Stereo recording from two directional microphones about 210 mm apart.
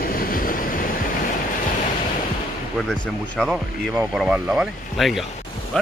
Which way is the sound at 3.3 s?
5° left (ahead or behind).